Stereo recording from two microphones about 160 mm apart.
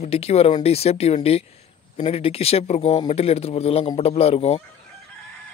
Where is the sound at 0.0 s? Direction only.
40° left (ahead or behind).